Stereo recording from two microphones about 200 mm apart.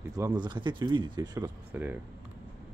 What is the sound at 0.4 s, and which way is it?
Speech, 20° right (ahead or behind).